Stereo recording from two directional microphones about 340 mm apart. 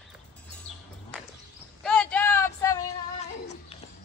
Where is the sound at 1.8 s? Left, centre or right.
Centre.